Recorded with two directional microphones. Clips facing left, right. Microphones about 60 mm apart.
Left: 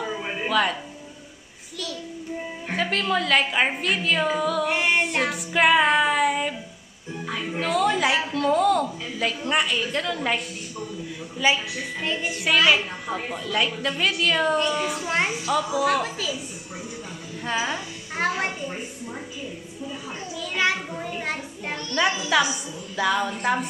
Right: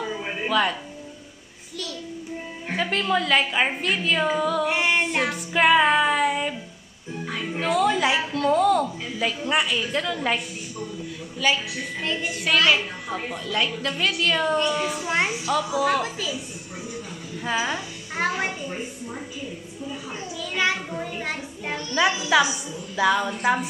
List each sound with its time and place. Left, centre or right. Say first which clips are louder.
0.0 s music: even; centre
2.7 s a woman's voice: right 1 dB; centre
11.3 s a woman's voice: left 1 dB; centre
17.4 s a child's voice: right 1 dB; centre
19.9 s a woman's voice: right 1 dB; centre
23.0 s a woman's voice: right 2 dB; centre